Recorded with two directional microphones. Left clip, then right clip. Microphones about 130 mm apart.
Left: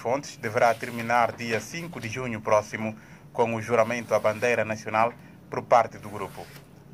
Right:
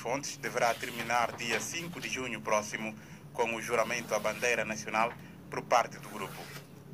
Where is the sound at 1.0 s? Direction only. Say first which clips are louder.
Left 7 dB; 50° left (ahead or behind).